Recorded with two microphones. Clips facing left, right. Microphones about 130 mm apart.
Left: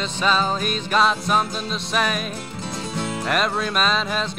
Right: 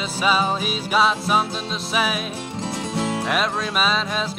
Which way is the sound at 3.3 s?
Centre (ahead or behind).